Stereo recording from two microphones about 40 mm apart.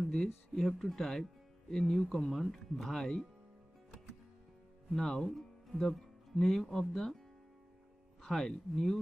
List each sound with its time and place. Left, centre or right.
0.1 s speech: centre
4.9 s speech: centre
8.2 s speech: centre